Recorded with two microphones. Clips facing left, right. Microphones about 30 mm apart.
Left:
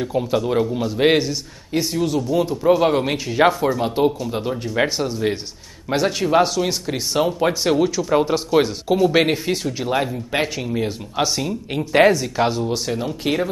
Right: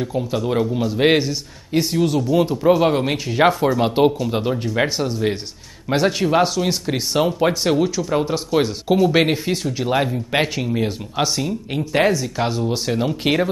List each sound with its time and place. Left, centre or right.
0.0 s speech: centre
0.4 s speech: centre
3.8 s speech: right
4.6 s speech: centre
11.3 s speech: centre; by 13.5 s right